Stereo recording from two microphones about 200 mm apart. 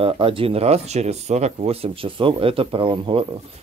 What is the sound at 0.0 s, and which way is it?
Speech, 25° right (ahead or behind).